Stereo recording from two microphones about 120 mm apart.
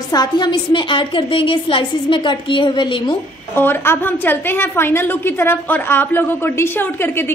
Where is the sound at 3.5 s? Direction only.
20° left (ahead or behind).